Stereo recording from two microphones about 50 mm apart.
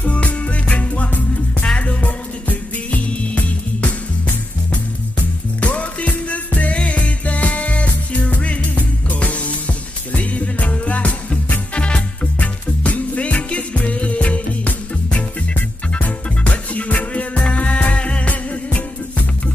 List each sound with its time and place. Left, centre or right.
0.0 s music: left
5.6 s music: left
11.7 s music: left